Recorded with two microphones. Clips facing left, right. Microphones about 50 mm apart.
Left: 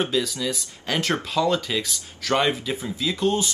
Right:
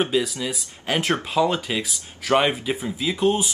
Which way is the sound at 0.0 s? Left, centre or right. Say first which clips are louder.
Right 2 dB; centre.